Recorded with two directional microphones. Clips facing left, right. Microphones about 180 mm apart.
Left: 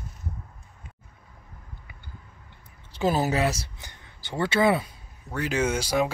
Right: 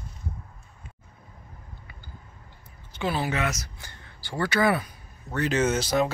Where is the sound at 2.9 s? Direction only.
40° left (ahead or behind).